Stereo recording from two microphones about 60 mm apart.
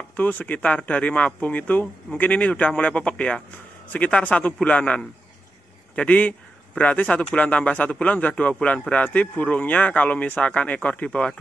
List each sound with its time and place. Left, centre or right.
0.1 s speech: left